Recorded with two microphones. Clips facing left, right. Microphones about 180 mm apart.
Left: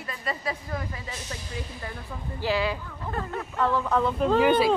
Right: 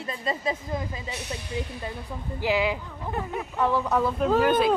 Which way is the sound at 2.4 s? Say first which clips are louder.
Right 2 dB; 15° right (ahead or behind).